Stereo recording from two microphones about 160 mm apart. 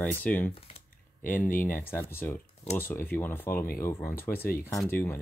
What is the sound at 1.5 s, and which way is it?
Speech, 55° left (ahead or behind).